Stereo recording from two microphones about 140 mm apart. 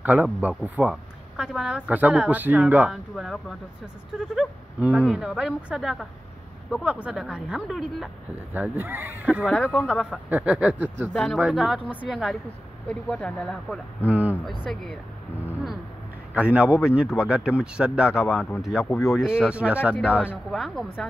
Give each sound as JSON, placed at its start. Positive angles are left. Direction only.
{"t": 0.0, "sound": "speech", "side_deg": -10}
{"t": 8.8, "sound": "speech", "side_deg": -15}
{"t": 9.5, "sound": "speech", "side_deg": 5}
{"t": 10.3, "sound": "speech", "side_deg": -10}
{"t": 11.1, "sound": "speech", "side_deg": 5}
{"t": 14.0, "sound": "speech", "side_deg": -10}
{"t": 14.7, "sound": "speech", "side_deg": 0}
{"t": 16.3, "sound": "speech", "side_deg": -10}
{"t": 18.9, "sound": "speech", "side_deg": 20}
{"t": 19.1, "sound": "speech", "side_deg": -5}